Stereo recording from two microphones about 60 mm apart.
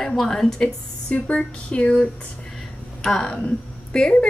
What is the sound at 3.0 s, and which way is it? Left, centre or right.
A woman's voice, centre.